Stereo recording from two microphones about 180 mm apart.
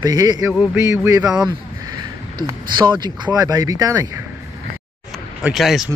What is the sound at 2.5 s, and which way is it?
Speech, 25° right (ahead or behind).